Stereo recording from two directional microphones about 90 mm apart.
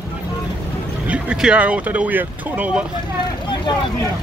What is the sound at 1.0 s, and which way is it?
Speech, 10° right (ahead or behind).